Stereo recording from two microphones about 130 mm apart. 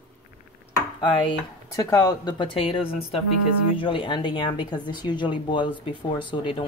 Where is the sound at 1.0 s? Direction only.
40° left (ahead or behind).